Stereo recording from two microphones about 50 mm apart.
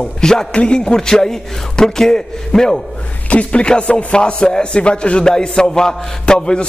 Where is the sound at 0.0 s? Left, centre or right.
Centre.